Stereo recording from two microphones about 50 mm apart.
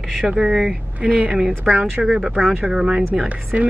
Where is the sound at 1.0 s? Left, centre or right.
Right.